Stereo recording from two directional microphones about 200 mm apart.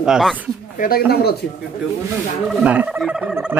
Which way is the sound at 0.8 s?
50° left (ahead or behind).